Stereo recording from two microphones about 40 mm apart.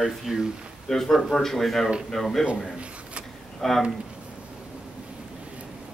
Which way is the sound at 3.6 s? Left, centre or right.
Centre.